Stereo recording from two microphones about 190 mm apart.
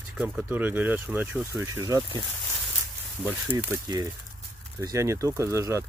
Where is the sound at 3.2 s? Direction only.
10° right (ahead or behind).